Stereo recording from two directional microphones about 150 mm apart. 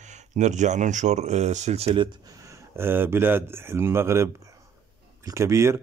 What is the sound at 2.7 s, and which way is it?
Speech, 15° right (ahead or behind).